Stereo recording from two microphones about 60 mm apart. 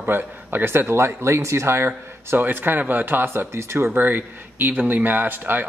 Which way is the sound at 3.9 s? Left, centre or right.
Right.